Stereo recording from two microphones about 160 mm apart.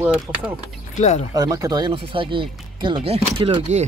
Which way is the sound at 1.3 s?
20° right (ahead or behind).